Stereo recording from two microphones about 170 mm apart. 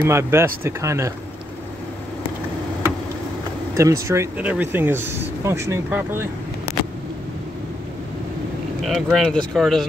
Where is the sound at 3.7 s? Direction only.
20° right (ahead or behind).